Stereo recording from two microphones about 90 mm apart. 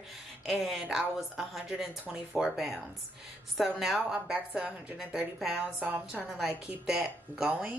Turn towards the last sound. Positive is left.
turn(degrees=-10)  # may be behind; listen again after turning